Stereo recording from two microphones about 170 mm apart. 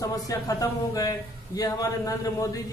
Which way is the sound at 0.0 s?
20° left (ahead or behind).